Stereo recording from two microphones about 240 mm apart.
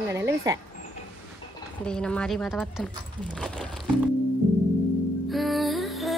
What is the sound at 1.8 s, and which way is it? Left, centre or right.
Speech, centre.